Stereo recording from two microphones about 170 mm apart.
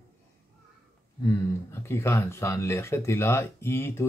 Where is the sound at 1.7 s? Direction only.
15° left (ahead or behind).